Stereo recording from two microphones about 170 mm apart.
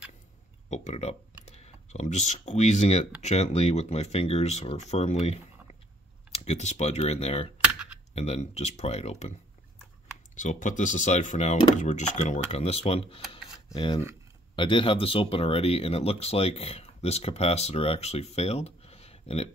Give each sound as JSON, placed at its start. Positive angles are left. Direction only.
{"t": 0.7, "sound": "speech", "side_deg": 40}
{"t": 10.3, "sound": "speech", "side_deg": 45}